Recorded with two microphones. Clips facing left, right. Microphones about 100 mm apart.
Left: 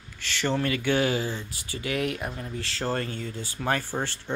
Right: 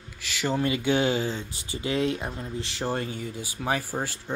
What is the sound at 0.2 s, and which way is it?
Speech, 10° right (ahead or behind).